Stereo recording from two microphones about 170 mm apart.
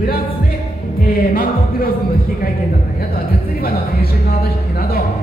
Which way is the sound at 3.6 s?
65° left (ahead or behind).